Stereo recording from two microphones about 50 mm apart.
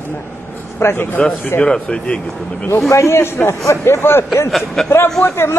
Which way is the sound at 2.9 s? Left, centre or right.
Left.